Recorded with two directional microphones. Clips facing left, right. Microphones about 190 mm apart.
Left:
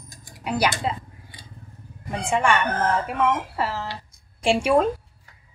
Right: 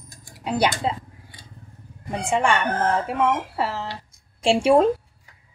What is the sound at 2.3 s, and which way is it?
Speech, 25° right (ahead or behind).